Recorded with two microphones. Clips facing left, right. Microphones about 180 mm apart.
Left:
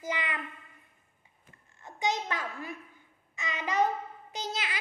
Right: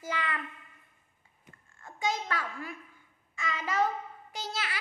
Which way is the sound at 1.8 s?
20° left (ahead or behind).